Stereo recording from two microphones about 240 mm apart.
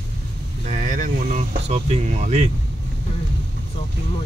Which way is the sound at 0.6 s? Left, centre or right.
Right.